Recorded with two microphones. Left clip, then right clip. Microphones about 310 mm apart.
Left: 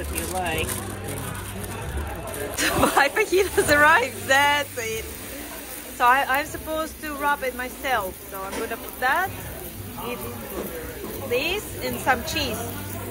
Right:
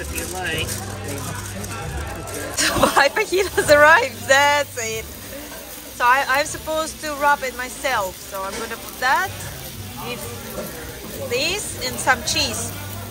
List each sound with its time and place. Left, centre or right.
2.5 s speech: centre
9.0 s speech: centre
11.3 s speech: centre